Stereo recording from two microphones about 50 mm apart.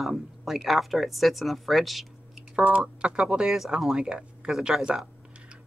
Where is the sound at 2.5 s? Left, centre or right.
Right.